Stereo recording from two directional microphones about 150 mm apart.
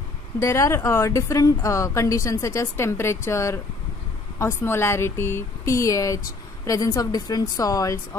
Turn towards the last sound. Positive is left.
turn(degrees=20)  # may be behind; listen again after turning